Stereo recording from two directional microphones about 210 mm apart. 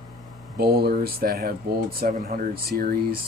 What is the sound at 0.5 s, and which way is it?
Speech, 50° right (ahead or behind).